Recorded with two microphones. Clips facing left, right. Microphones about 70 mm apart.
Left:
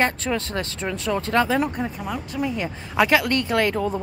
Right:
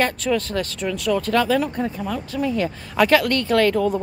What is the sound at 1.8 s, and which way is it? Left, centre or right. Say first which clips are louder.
Speech: right 3 dB; centre.